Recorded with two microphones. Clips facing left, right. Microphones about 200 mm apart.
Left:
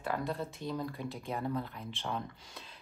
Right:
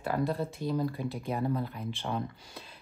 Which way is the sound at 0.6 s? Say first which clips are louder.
Right 6 dB; 5° right (ahead or behind).